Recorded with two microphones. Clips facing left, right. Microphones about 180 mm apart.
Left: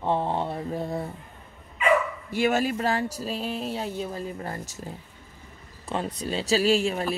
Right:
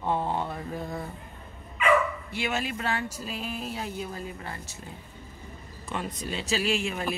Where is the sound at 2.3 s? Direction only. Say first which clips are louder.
Left 7 dB; 45° left (ahead or behind).